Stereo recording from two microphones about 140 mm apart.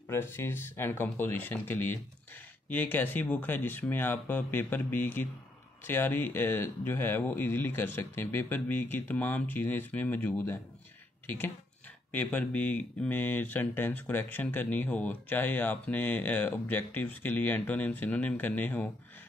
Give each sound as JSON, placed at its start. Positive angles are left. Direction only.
{"t": 0.1, "sound": "speech", "side_deg": 15}